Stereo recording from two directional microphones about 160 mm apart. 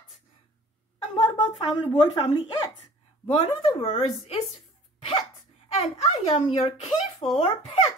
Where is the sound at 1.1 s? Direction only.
35° left (ahead or behind).